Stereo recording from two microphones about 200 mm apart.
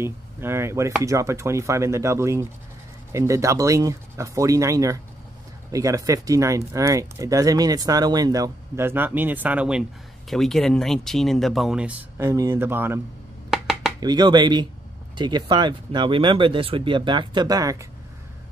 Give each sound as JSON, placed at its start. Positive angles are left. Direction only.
{"t": 0.0, "sound": "speech", "side_deg": -10}
{"t": 13.5, "sound": "a sound", "side_deg": 0}
{"t": 13.9, "sound": "speech", "side_deg": -20}